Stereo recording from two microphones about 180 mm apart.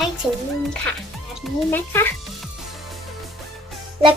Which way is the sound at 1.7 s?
10° left (ahead or behind).